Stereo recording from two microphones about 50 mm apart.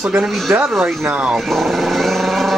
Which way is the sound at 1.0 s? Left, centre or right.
Right.